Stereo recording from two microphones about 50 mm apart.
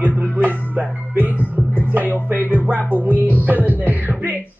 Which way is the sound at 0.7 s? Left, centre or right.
Right.